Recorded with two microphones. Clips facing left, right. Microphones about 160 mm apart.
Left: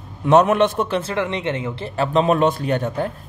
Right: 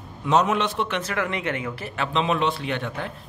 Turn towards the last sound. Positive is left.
turn(degrees=40)  # may be behind; listen again after turning